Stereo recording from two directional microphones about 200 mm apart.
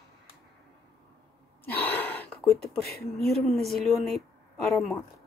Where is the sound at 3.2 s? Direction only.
Centre (ahead or behind).